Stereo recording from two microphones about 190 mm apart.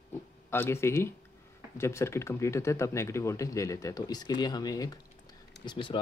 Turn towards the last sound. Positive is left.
turn(degrees=25)  # may be behind; listen again after turning